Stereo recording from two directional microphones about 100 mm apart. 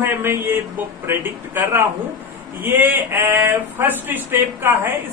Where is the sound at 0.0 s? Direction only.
20° right (ahead or behind).